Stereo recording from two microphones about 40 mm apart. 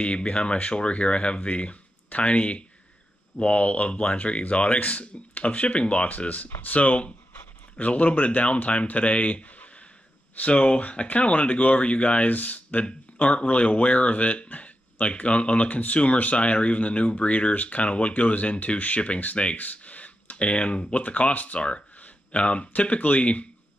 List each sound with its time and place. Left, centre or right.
0.0 s speech: left
12.8 s speech: left